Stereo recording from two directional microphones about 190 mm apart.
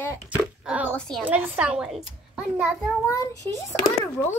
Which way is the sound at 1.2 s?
5° right (ahead or behind).